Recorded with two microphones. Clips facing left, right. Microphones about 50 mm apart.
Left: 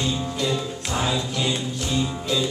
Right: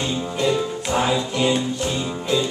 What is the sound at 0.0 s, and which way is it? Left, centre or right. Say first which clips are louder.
Music: right 3 dB; right.